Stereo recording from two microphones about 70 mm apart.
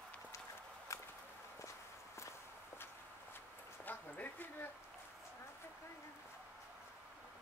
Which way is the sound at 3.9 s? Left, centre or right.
Left.